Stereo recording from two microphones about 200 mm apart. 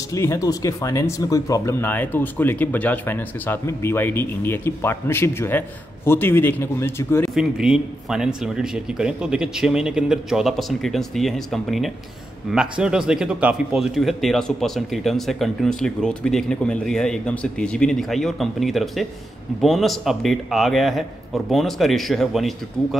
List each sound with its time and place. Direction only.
0.1 s speech: 15° left (ahead or behind)
7.3 s speech: 5° right (ahead or behind)